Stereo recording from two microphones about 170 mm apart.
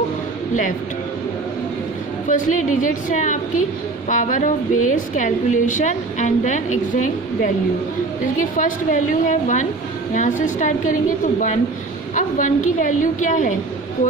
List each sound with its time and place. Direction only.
2.2 s a woman's voice: 50° left (ahead or behind)